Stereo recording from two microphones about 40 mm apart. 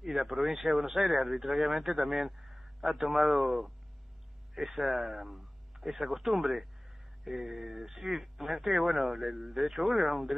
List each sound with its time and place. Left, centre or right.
0.0 s speech: centre